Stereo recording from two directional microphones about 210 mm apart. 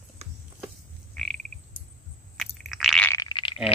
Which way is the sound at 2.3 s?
Centre (ahead or behind).